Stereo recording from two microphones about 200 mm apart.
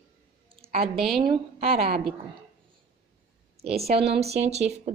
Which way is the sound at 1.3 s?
30° right (ahead or behind).